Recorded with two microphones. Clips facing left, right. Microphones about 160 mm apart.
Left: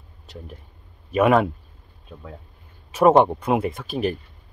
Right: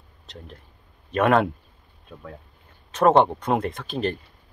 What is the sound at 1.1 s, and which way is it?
Speech, 5° left (ahead or behind).